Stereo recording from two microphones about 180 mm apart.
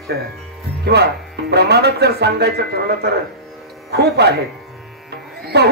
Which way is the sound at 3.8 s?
65° right (ahead or behind).